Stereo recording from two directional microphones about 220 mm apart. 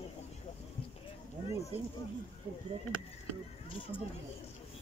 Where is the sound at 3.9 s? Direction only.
25° left (ahead or behind).